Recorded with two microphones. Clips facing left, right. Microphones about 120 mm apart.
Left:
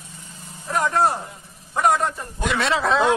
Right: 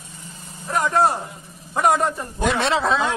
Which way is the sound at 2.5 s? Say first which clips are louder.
Left 1 dB; 25° right (ahead or behind).